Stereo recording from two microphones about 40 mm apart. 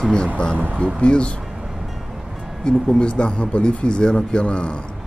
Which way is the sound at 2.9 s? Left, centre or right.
Left.